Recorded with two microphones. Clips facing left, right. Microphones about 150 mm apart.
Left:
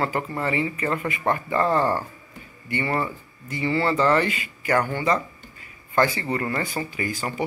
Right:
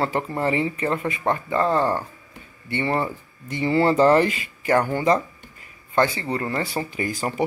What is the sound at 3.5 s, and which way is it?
Speech, 40° right (ahead or behind).